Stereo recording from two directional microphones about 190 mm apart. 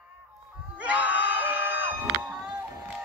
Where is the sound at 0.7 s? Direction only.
5° right (ahead or behind).